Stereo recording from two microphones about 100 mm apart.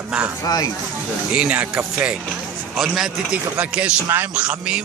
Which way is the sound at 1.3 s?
15° right (ahead or behind).